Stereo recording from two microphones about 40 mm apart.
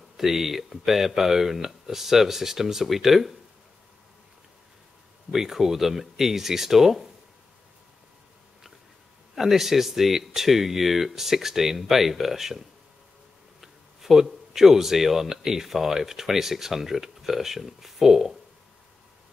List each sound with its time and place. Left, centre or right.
0.2 s speech: centre
5.3 s speech: centre
9.3 s speech: centre